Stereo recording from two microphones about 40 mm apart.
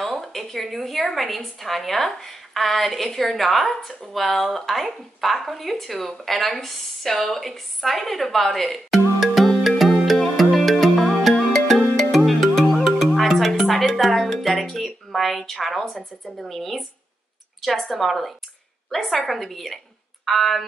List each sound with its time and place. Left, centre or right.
0.0 s speech: centre
9.6 s music: centre
15.0 s a woman's voice: centre